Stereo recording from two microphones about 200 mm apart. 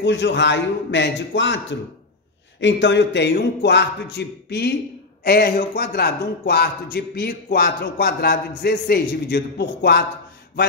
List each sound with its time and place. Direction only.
0.0 s a man's voice: 65° left (ahead or behind)